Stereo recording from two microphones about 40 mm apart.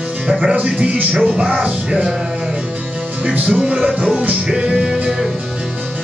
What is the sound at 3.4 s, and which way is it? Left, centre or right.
Music, right.